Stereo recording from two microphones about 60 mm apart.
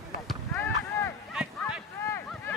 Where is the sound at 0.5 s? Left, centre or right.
Left.